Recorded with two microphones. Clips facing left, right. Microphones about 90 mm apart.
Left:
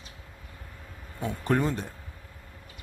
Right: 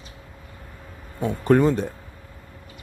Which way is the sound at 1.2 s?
90° right.